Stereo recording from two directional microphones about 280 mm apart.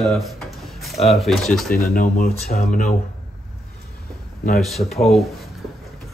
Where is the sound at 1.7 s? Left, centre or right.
Left.